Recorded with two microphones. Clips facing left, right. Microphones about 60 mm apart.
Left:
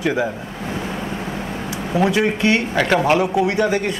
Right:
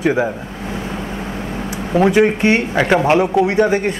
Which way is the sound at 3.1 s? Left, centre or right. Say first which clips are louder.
Right 4 dB; right.